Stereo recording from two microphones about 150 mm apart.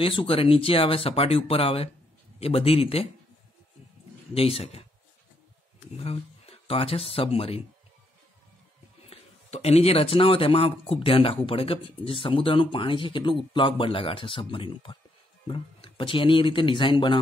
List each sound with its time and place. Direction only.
0.0 s speech: 40° left (ahead or behind)
4.3 s speech: 40° left (ahead or behind)
5.9 s speech: 40° left (ahead or behind)
9.0 s speech: 45° left (ahead or behind)